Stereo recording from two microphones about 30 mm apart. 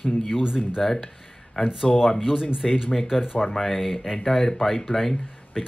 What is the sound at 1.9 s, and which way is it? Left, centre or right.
Speech, centre.